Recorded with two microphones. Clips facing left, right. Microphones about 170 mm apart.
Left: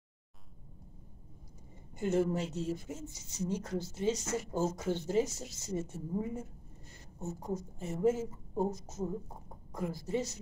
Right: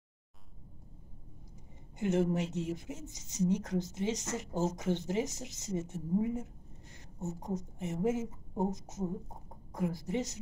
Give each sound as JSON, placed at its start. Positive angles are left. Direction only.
{"t": 2.0, "sound": "speech", "side_deg": -20}